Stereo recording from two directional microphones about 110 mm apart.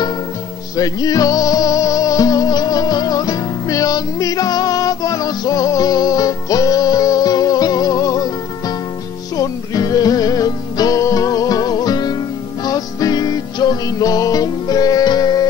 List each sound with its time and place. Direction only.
0.7 s music: 35° left (ahead or behind)